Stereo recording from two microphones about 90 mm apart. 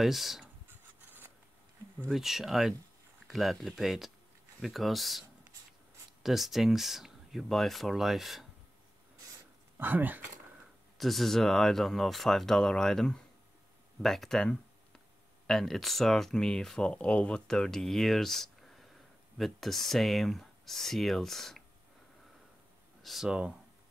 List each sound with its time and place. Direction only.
0.0 s speech: centre (ahead or behind)
0.7 s rub: 20° right (ahead or behind)
2.0 s speech: 5° right (ahead or behind)
6.2 s speech: 5° right (ahead or behind)
9.8 s speech: 20° right (ahead or behind)
11.0 s speech: centre (ahead or behind)
23.0 s speech: 5° right (ahead or behind)